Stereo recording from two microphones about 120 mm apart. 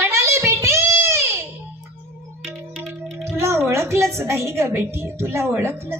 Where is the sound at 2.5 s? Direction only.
15° right (ahead or behind).